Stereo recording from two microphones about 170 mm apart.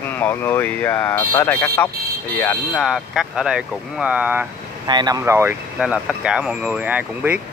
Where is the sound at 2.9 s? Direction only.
5° right (ahead or behind).